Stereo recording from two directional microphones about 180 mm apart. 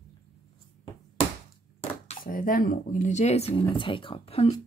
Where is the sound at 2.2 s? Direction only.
50° left (ahead or behind).